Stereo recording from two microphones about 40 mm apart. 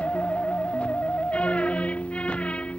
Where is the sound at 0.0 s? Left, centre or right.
Left.